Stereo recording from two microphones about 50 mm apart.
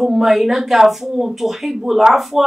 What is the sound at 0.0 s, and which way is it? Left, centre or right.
A woman's voice, centre.